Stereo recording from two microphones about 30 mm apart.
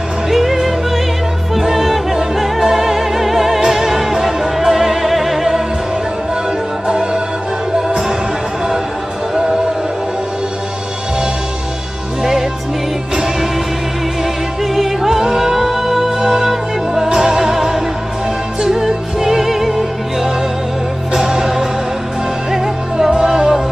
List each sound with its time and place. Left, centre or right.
0.3 s music: centre
12.2 s music: centre
14.6 s music: centre